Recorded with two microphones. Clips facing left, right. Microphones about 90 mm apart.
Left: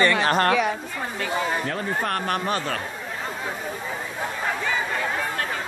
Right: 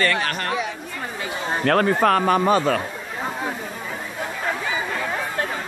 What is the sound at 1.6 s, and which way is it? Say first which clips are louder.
Speech: right 9 dB; 75° right (ahead or behind).